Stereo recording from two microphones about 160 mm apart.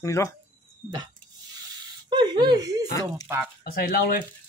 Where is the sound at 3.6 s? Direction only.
65° left (ahead or behind).